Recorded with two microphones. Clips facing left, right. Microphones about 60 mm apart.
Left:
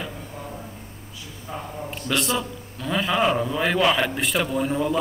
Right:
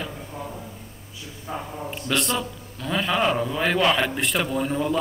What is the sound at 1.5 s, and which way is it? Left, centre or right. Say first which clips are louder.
Speech: right 2 dB; centre.